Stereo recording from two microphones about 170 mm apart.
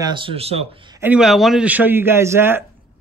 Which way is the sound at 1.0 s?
5° right (ahead or behind).